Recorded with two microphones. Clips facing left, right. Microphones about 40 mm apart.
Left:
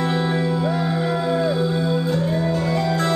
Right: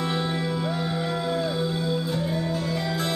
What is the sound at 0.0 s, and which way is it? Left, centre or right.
Music, centre.